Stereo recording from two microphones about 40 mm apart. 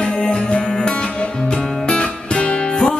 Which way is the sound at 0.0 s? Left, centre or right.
Left.